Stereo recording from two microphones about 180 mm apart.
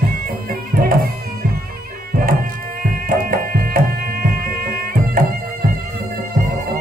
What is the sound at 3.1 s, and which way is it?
Music, 50° right (ahead or behind).